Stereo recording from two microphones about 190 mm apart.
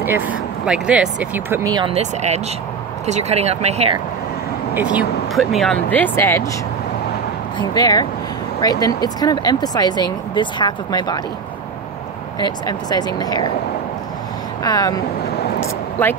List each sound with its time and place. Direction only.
0.0 s speech: 10° right (ahead or behind)
1.9 s speech: 35° right (ahead or behind)
4.9 s speech: centre (ahead or behind)
7.5 s speech: 20° left (ahead or behind)
12.4 s speech: 20° left (ahead or behind)
14.6 s speech: 20° left (ahead or behind)
15.6 s a sound: 10° left (ahead or behind)